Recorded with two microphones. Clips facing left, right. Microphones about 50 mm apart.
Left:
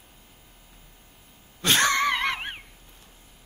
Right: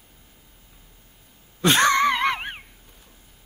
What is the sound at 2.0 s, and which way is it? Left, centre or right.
Screaming, centre.